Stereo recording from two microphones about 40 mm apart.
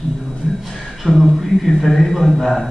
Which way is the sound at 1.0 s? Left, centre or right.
Centre.